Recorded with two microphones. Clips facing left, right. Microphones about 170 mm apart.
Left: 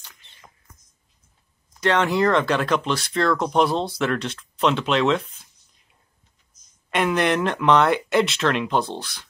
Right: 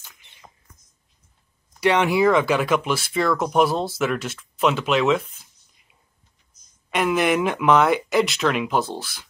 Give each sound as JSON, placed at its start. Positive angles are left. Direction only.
{"t": 0.0, "sound": "a sound", "side_deg": -15}
{"t": 1.8, "sound": "speech", "side_deg": -10}
{"t": 6.9, "sound": "speech", "side_deg": 0}